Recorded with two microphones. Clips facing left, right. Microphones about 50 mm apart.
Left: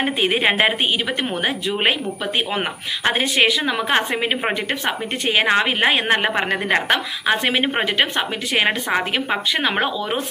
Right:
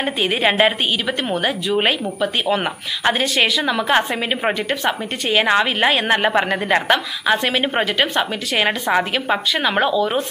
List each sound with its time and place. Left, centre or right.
0.0 s a woman's voice: left